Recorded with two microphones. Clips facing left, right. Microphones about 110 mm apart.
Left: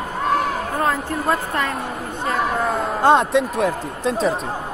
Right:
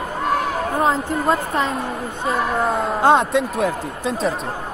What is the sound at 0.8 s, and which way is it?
A woman's voice, 20° right (ahead or behind).